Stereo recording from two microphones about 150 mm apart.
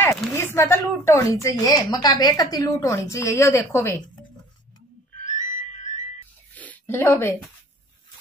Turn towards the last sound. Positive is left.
turn(degrees=15)  # may be behind; listen again after turning